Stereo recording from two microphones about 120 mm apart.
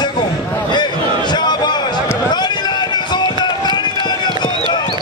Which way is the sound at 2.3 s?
35° left (ahead or behind).